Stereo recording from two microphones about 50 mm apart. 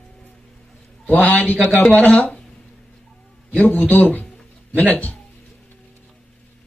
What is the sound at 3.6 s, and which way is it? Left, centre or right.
Speech, left.